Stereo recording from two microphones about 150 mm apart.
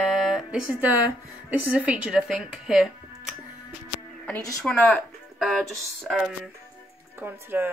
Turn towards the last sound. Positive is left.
turn(degrees=-15)  # may be behind; listen again after turning